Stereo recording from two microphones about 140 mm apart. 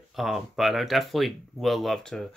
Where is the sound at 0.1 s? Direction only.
Centre (ahead or behind).